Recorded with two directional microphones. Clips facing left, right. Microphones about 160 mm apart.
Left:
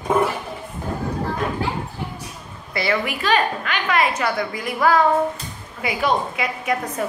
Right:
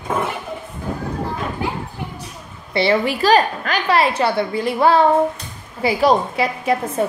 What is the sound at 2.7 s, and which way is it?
A woman's voice, 30° right (ahead or behind).